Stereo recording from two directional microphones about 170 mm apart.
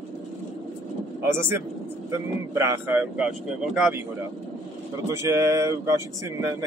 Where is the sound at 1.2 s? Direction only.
15° right (ahead or behind).